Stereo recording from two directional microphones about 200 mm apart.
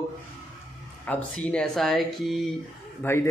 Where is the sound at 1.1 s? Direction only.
5° left (ahead or behind).